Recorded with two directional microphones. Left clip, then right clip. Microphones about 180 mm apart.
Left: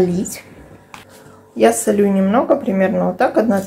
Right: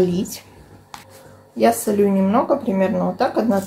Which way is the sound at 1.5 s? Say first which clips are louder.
Left 3 dB; 15° left (ahead or behind).